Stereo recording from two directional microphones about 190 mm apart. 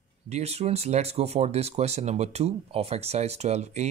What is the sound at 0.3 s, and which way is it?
Speech, 35° right (ahead or behind).